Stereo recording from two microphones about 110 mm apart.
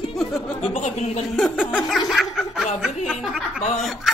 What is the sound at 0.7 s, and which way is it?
Speech, 90° left.